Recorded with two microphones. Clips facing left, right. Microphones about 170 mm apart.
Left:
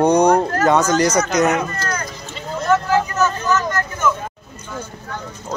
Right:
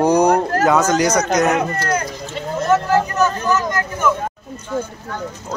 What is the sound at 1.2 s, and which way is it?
Speech, 45° right (ahead or behind).